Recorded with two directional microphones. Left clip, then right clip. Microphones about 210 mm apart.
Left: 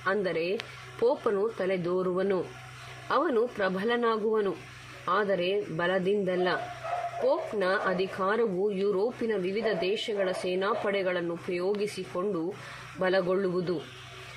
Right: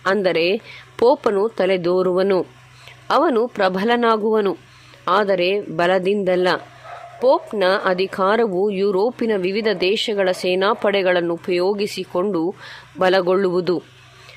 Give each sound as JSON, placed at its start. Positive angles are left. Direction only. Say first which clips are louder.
{"t": 0.0, "sound": "a woman's voice", "louder": "right 11 dB", "side_deg": -40}